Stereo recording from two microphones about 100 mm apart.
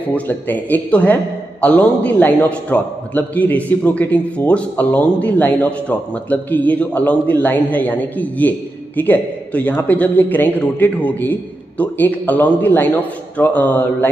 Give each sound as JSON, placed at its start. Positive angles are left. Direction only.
{"t": 0.1, "sound": "a man's voice", "side_deg": 20}